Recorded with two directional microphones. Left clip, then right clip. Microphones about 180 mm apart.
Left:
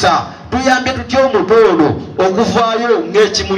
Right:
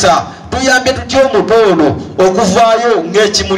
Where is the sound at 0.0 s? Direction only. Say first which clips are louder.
Right 3 dB; 55° right (ahead or behind).